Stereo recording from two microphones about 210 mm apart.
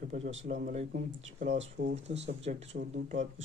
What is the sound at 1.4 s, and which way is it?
Speech, 55° right (ahead or behind).